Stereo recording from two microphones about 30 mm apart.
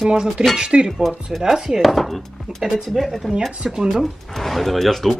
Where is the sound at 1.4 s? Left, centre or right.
Centre.